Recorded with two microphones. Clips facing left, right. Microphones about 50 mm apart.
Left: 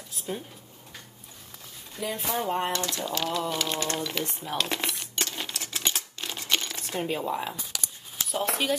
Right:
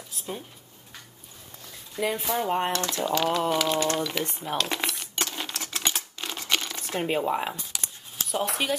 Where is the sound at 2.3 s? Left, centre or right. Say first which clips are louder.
Even; centre.